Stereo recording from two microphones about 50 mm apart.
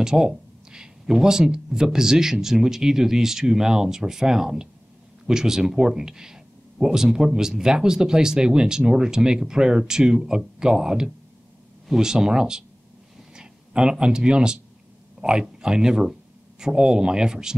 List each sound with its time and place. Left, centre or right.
0.0 s speech: centre